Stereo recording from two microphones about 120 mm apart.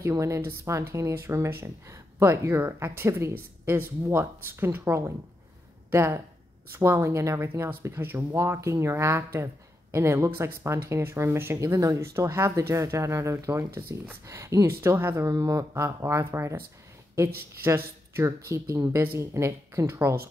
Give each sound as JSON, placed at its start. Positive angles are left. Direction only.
{"t": 0.0, "sound": "speech", "side_deg": -25}